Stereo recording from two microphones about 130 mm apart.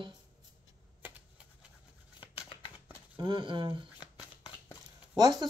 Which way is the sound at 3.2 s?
40° right (ahead or behind).